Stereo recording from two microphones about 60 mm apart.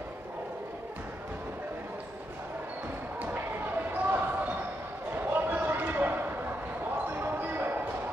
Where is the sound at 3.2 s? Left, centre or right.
Right.